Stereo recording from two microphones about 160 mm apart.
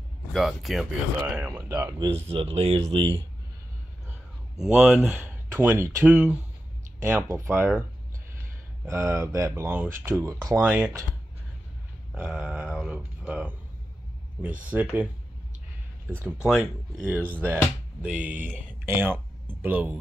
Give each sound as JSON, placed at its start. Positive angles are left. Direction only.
{"t": 0.3, "sound": "speech", "side_deg": 0}
{"t": 1.5, "sound": "speech", "side_deg": -25}
{"t": 4.6, "sound": "speech", "side_deg": -5}
{"t": 8.8, "sound": "speech", "side_deg": -15}
{"t": 12.1, "sound": "speech", "side_deg": -5}
{"t": 14.6, "sound": "speech", "side_deg": -10}
{"t": 16.2, "sound": "speech", "side_deg": -10}